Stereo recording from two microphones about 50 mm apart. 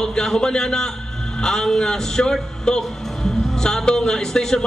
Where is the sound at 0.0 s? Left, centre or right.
Centre.